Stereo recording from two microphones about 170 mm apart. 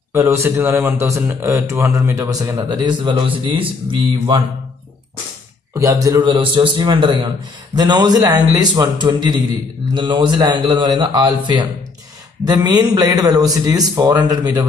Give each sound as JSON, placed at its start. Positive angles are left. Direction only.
{"t": 0.1, "sound": "a man's voice", "side_deg": -15}
{"t": 5.8, "sound": "a man's voice", "side_deg": -20}